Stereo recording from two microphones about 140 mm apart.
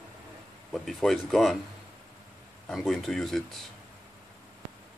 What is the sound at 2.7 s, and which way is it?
Speech, centre (ahead or behind).